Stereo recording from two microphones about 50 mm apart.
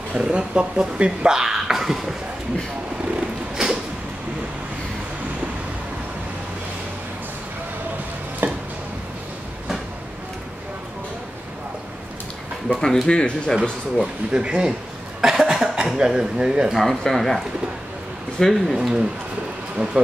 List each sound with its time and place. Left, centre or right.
0.1 s speech: right
3.2 s a sound: centre
8.4 s chopping: right
12.6 s speech: centre
14.3 s speech: centre
15.2 s cough: centre
16.7 s speech: centre
18.4 s speech: centre
18.8 s speech: centre